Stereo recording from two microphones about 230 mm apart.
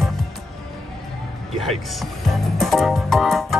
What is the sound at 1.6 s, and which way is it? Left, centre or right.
Speech, centre.